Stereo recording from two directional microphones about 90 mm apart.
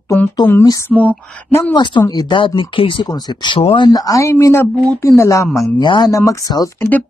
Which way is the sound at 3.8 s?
45° left (ahead or behind).